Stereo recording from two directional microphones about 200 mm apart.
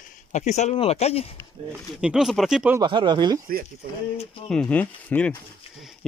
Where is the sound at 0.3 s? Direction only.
35° left (ahead or behind).